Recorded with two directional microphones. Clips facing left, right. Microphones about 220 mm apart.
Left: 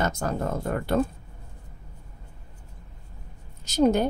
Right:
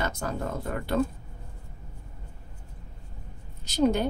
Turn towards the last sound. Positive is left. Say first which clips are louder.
# left 3 dB
turn(degrees=45)  # may be behind; listen again after turning